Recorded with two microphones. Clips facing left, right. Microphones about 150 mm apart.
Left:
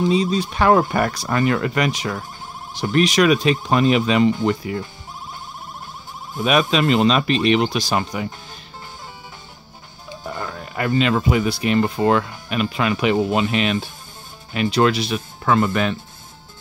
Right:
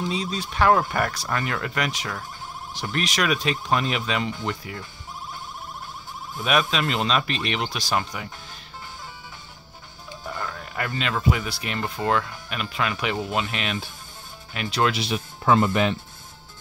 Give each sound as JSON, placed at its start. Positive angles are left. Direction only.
{"t": 0.1, "sound": "speech", "side_deg": 0}
{"t": 0.5, "sound": "speech", "side_deg": 10}
{"t": 6.4, "sound": "speech", "side_deg": 5}
{"t": 10.2, "sound": "a sound", "side_deg": 10}
{"t": 11.1, "sound": "speech", "side_deg": 10}
{"t": 15.0, "sound": "speech", "side_deg": -20}